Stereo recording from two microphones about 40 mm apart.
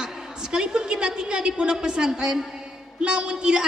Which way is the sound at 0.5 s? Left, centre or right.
Centre.